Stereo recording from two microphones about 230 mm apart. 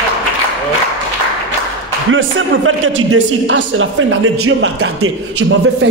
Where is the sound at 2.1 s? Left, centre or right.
Right.